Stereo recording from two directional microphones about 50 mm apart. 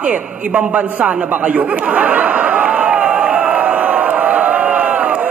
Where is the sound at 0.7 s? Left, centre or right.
Right.